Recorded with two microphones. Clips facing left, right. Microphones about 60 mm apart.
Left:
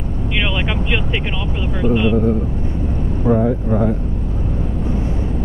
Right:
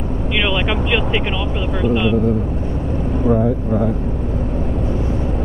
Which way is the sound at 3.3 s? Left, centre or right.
Centre.